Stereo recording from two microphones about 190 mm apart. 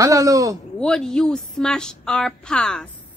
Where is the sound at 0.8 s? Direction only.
5° left (ahead or behind).